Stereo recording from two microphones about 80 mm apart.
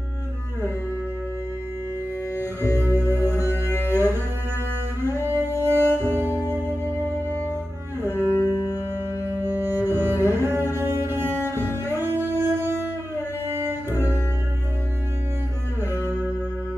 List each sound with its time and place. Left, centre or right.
2.3 s music: left
2.8 s music: right
3.9 s cello: right
5.2 s music: right
8.3 s music: left
8.5 s music: left
9.8 s cello: right
11.5 s music: right
15.8 s music: right